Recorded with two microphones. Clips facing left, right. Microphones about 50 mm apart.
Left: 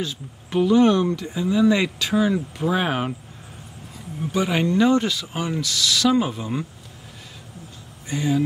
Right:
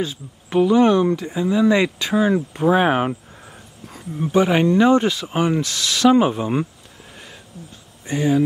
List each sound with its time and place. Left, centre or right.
0.0 s speech: right
4.2 s speech: right
8.1 s speech: right